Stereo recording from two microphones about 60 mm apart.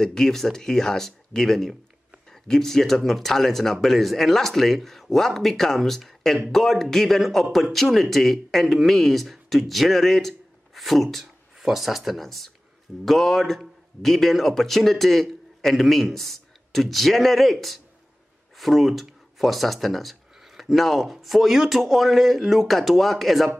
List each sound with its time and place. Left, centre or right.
0.0 s speech: centre